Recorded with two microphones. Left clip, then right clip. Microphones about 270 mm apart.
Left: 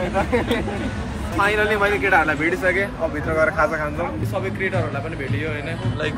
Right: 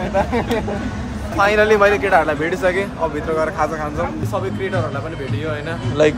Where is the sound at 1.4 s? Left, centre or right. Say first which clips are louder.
Right 6 dB; right.